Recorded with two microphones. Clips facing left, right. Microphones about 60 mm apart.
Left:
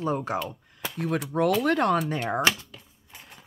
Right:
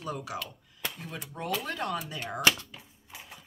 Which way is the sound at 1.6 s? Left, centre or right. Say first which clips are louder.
Left 11 dB; left.